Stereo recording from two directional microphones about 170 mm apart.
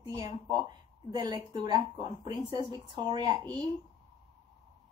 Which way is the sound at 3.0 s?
25° right (ahead or behind).